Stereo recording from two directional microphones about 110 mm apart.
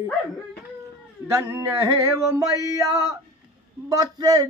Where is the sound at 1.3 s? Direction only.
25° right (ahead or behind).